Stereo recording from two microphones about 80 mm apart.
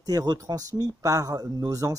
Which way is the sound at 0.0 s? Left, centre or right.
Right.